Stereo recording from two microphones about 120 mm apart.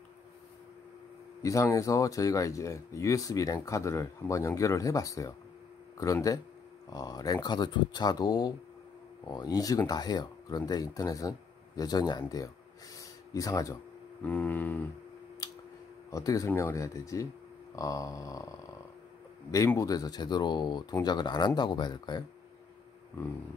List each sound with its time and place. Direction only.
1.4 s speech: 25° left (ahead or behind)
6.9 s speech: 35° left (ahead or behind)
12.9 s a sound: 30° left (ahead or behind)
14.2 s a sound: 15° left (ahead or behind)
16.1 s speech: 30° left (ahead or behind)
19.8 s speech: 30° left (ahead or behind)